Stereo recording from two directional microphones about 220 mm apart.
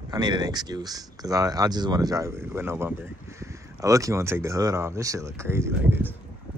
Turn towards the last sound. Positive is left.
turn(degrees=-10)  # may be behind; listen again after turning